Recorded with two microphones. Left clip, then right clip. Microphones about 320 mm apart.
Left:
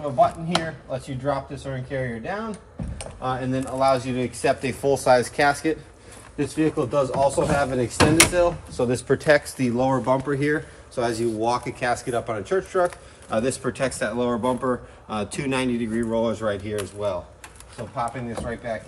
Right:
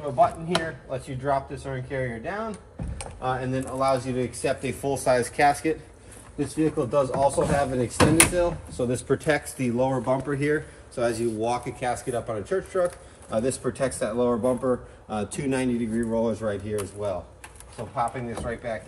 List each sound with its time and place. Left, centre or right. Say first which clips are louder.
0.0 s speech: left 2 dB; centre
6.3 s speech: left 2 dB; centre
9.8 s speech: left 4 dB; left
11.1 s speech: left 2 dB; centre